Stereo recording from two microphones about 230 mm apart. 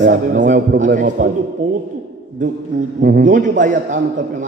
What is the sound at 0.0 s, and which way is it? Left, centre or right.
A man's voice, right.